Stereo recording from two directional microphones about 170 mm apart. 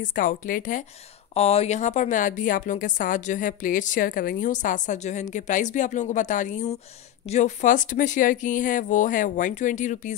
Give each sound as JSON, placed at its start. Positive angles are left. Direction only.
{"t": 0.0, "sound": "a woman's voice", "side_deg": 50}
{"t": 1.3, "sound": "a woman's voice", "side_deg": 40}